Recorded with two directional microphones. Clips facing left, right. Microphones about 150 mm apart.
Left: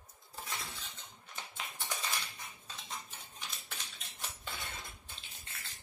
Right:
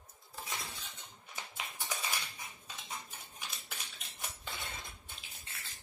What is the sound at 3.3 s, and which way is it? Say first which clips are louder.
Cutlery: even; 10° right (ahead or behind).